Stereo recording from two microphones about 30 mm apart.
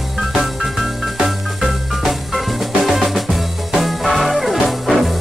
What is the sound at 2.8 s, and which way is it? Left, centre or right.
Music, centre.